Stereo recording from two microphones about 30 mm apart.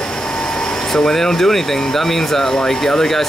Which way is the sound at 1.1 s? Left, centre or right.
Centre.